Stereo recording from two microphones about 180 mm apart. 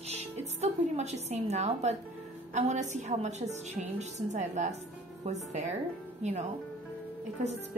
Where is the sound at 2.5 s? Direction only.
40° right (ahead or behind).